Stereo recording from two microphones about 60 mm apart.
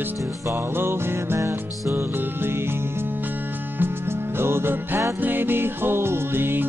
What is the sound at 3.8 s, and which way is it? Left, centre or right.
Music, right.